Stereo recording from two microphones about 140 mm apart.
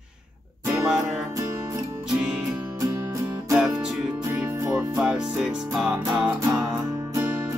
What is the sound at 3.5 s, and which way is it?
Music, 5° right (ahead or behind).